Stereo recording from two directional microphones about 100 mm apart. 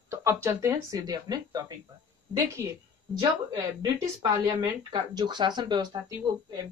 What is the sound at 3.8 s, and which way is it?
Speech, 45° right (ahead or behind).